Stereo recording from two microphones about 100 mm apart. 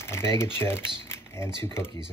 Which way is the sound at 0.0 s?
25° left (ahead or behind).